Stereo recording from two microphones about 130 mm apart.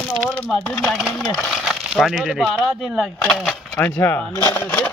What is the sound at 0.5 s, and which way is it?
Speech, 5° left (ahead or behind).